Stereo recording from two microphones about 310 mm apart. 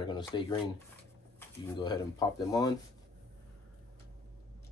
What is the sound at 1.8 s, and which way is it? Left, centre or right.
Speech, centre.